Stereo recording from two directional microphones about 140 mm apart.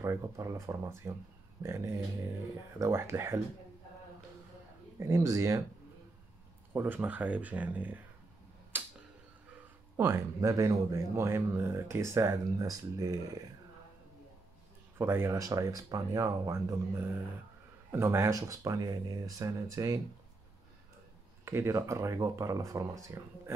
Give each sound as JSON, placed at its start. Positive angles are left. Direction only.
{"t": 0.0, "sound": "speech", "side_deg": -20}
{"t": 4.9, "sound": "speech", "side_deg": -20}
{"t": 6.7, "sound": "speech", "side_deg": -15}
{"t": 8.7, "sound": "tick-tock", "side_deg": -15}
{"t": 9.9, "sound": "speech", "side_deg": -15}
{"t": 15.0, "sound": "speech", "side_deg": -15}
{"t": 21.5, "sound": "speech", "side_deg": -20}